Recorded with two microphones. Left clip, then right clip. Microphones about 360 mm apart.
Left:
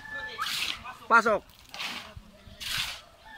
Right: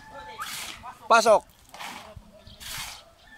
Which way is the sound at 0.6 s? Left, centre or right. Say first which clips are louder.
Left 5 dB; centre.